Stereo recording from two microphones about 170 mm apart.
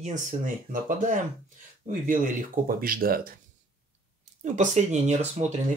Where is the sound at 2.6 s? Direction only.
55° right (ahead or behind).